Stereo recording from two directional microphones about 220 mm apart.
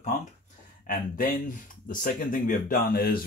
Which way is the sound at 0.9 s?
40° left (ahead or behind).